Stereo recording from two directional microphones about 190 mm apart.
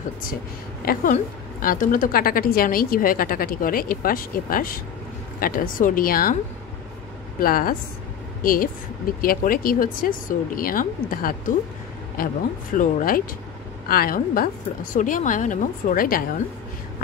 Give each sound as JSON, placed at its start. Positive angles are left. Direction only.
{"t": 0.8, "sound": "a woman's voice", "side_deg": 45}
{"t": 7.3, "sound": "a woman's voice", "side_deg": 50}
{"t": 12.7, "sound": "a woman's voice", "side_deg": 50}